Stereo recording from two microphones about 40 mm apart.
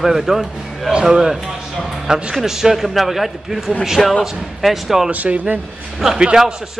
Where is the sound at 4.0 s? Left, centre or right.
Centre.